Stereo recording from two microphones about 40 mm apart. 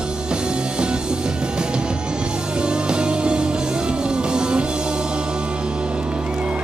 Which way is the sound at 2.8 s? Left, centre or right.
Right.